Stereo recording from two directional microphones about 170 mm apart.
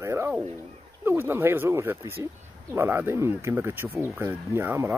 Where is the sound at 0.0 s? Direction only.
15° right (ahead or behind).